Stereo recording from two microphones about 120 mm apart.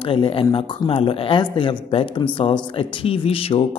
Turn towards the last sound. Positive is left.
turn(degrees=50)  # may be behind; listen again after turning